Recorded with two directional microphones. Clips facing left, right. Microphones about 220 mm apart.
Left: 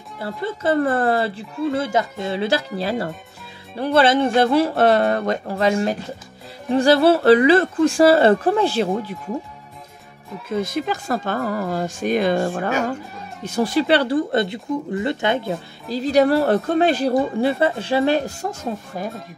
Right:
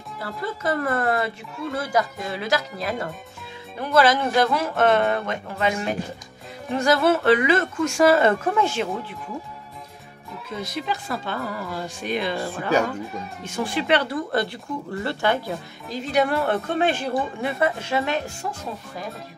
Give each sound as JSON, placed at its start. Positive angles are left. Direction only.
{"t": 0.2, "sound": "a woman's voice", "side_deg": 25}
{"t": 10.5, "sound": "speech", "side_deg": 50}
{"t": 13.4, "sound": "speech", "side_deg": 40}
{"t": 15.9, "sound": "a woman's voice", "side_deg": 35}